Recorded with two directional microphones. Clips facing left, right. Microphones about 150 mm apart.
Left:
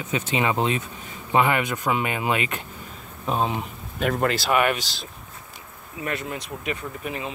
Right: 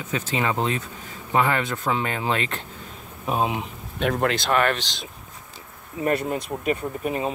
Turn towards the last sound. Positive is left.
turn(degrees=-40)  # may be behind; listen again after turning